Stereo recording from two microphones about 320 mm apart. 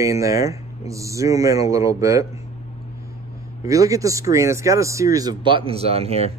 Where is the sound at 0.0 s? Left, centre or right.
Centre.